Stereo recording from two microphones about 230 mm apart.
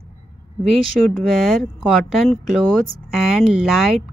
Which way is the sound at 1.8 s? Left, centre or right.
Centre.